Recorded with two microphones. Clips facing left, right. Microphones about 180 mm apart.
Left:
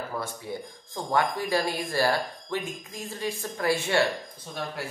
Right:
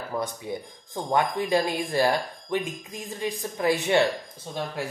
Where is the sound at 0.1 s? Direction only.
15° right (ahead or behind).